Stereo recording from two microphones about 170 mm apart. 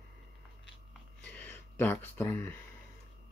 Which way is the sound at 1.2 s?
10° left (ahead or behind).